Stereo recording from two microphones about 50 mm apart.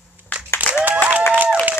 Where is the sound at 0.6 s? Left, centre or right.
Right.